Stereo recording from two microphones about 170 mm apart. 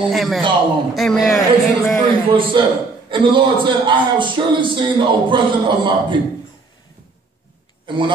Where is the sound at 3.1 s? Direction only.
30° right (ahead or behind).